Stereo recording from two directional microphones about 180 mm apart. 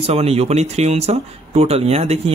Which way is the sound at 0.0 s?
35° right (ahead or behind).